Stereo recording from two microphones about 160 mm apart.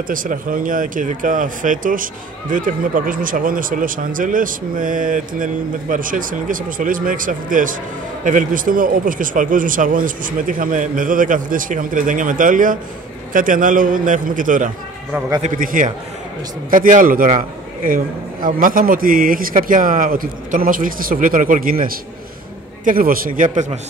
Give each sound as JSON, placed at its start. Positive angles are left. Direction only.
{"t": 0.1, "sound": "speech", "side_deg": -60}